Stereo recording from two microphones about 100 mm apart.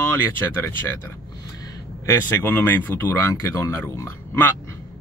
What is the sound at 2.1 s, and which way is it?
Speech, 20° left (ahead or behind).